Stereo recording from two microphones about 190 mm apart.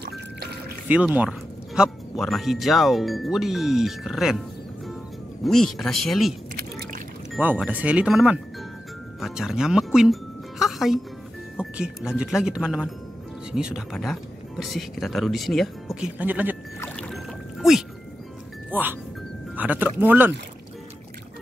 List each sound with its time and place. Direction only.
0.8 s speech: 10° right (ahead or behind)
5.4 s speech: centre (ahead or behind)
6.5 s a sound: 50° right (ahead or behind)
7.3 s a woman's voice: 5° right (ahead or behind)
16.8 s a sound: 5° left (ahead or behind)
18.7 s speech: 10° right (ahead or behind)